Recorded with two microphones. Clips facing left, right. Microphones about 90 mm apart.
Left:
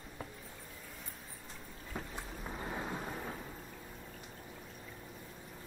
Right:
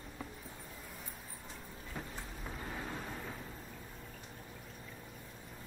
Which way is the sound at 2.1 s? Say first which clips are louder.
Left 2 dB; 20° left (ahead or behind).